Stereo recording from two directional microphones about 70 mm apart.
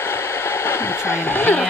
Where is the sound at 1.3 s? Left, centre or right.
Left.